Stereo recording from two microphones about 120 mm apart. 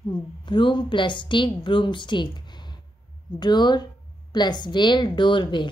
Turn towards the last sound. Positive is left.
turn(degrees=40)  # may be behind; listen again after turning